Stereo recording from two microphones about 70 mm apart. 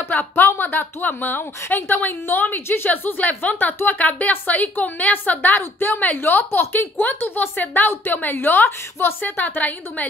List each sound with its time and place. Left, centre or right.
0.1 s a woman's voice: left